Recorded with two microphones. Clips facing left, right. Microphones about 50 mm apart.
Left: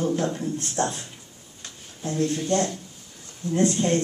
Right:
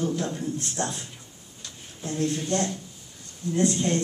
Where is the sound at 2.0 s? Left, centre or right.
Left.